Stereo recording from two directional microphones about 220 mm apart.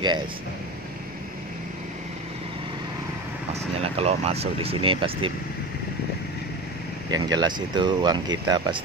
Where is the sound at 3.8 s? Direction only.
25° right (ahead or behind).